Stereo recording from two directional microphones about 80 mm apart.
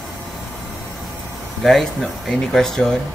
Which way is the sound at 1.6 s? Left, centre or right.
Centre.